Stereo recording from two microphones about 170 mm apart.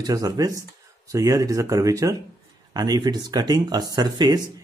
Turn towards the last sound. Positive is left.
turn(degrees=-25)  # may be behind; listen again after turning